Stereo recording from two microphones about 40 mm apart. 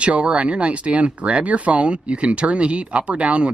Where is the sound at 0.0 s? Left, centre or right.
Right.